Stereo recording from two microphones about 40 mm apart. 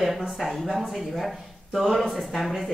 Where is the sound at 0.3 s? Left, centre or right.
Centre.